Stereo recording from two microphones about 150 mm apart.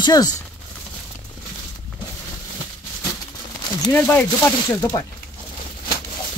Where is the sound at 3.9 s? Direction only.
10° left (ahead or behind).